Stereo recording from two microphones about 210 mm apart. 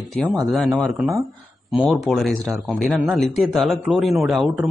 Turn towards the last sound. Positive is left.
turn(degrees=0)  # may be behind; listen again after turning